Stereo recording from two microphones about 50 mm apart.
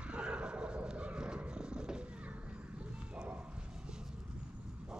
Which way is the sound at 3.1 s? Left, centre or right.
Right.